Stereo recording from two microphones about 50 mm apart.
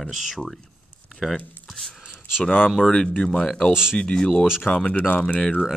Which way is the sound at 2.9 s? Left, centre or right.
Centre.